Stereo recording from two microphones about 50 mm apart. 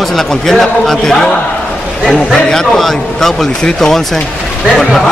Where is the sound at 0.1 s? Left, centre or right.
Centre.